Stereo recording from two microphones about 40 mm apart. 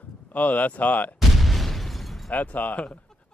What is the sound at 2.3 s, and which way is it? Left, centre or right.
Speech, left.